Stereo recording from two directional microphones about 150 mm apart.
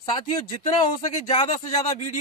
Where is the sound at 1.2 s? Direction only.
45° left (ahead or behind).